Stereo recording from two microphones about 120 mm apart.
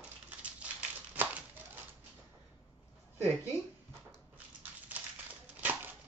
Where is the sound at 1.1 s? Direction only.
15° right (ahead or behind).